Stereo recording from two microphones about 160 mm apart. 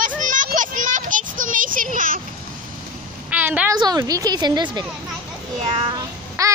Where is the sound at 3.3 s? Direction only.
10° right (ahead or behind).